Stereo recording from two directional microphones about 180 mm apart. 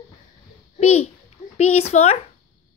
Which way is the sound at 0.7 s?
35° left (ahead or behind).